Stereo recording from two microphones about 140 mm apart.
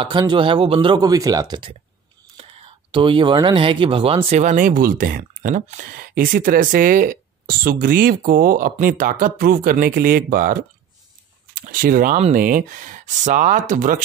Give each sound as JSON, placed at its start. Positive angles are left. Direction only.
{"t": 0.0, "sound": "speech", "side_deg": -35}
{"t": 2.3, "sound": "speech", "side_deg": -40}
{"t": 8.7, "sound": "speech", "side_deg": -75}